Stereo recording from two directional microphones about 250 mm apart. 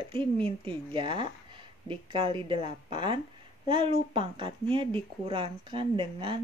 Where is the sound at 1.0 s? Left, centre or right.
Centre.